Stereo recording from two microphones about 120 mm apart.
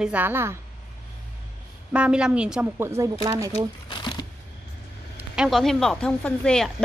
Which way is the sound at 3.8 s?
40° left (ahead or behind).